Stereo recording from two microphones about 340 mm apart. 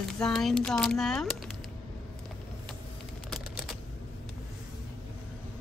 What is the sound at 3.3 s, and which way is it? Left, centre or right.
Typing, centre.